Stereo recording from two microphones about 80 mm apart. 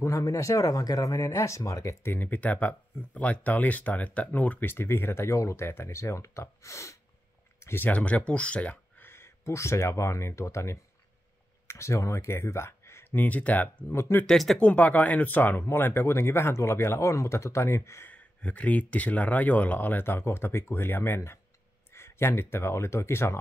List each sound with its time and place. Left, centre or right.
0.0 s speech: left
2.0 s speech: left
7.9 s speech: centre; by 13.1 s left
13.1 s speech: left
14.2 s speech: centre
14.6 s speech: centre; by 18.0 s left
18.0 s speech: centre; by 23.4 s left